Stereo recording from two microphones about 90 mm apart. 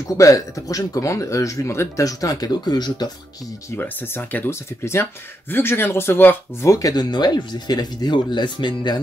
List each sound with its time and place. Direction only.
0.2 s speech: 40° left (ahead or behind)
3.7 s speech: 25° left (ahead or behind)
6.7 s speech: 45° left (ahead or behind)